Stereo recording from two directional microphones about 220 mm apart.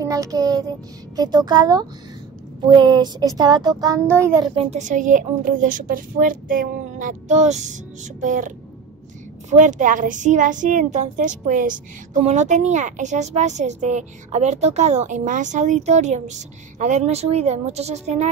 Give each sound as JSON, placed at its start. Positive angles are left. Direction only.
{"t": 0.0, "sound": "child singing", "side_deg": -15}
{"t": 1.1, "sound": "a child's voice", "side_deg": -20}
{"t": 4.6, "sound": "a woman's voice", "side_deg": -30}